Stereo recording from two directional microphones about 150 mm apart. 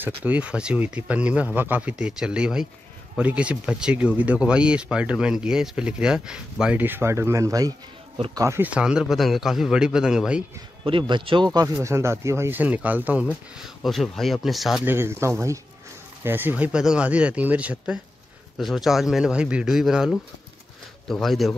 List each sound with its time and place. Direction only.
0.0 s a man's voice: 10° right (ahead or behind)
10.8 s speech: 35° right (ahead or behind); by 13.3 s 10° right (ahead or behind)
13.6 s a man's voice: centre (ahead or behind)
14.9 s a man's voice: 15° right (ahead or behind)
21.1 s a man's voice: centre (ahead or behind)